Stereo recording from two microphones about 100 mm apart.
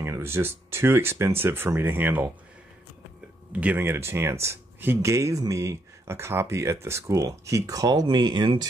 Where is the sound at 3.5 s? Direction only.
15° right (ahead or behind).